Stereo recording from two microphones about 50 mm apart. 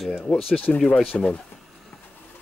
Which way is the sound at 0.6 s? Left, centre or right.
Left.